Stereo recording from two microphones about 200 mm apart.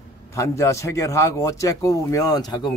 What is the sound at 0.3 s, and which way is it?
Speech, 15° left (ahead or behind).